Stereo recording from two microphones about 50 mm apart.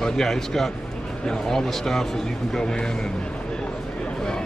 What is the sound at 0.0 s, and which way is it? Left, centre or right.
A man's voice, centre.